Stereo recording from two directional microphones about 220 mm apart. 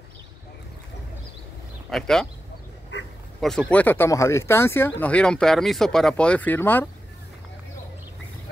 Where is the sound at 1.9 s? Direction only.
Centre (ahead or behind).